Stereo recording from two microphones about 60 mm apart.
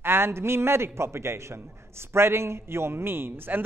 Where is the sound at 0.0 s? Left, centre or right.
Right.